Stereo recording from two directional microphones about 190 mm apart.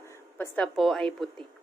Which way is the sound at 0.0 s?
10° left (ahead or behind).